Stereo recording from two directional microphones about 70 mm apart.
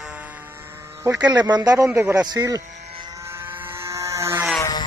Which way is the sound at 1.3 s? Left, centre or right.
Right.